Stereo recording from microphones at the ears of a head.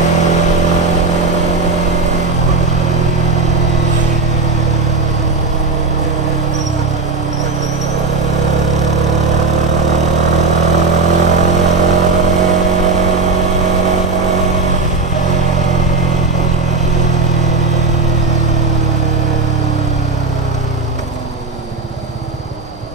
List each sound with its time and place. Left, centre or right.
0.7 s vehicle: right
8.4 s vehicle: right